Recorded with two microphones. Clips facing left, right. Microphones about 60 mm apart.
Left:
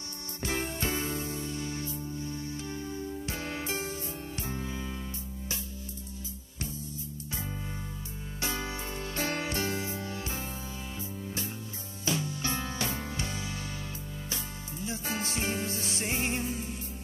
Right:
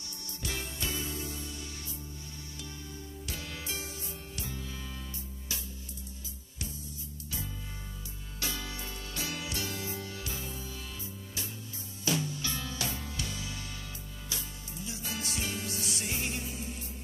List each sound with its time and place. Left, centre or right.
0.4 s music: left
2.9 s music: left
8.4 s music: left
12.0 s music: left
14.9 s music: left